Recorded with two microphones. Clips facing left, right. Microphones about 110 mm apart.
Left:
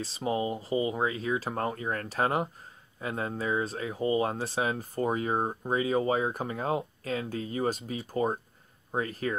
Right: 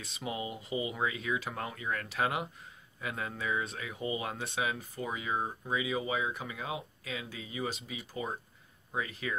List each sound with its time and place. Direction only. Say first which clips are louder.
0.0 s speech: left 8 dB; 35° left (ahead or behind)